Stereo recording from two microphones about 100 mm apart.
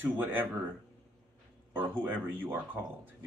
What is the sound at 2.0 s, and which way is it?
Speech, 20° right (ahead or behind).